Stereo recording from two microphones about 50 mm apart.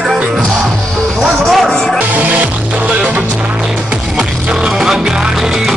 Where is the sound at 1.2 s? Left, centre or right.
Centre.